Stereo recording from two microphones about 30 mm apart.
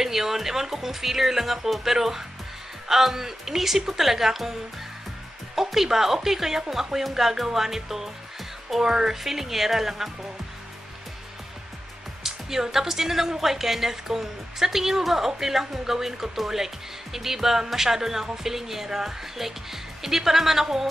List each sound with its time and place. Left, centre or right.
0.0 s speech: centre
5.6 s speech: centre
9.2 s speech: centre
12.2 s speech: centre